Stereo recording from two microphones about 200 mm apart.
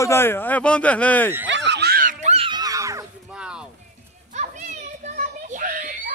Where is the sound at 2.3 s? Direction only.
25° right (ahead or behind).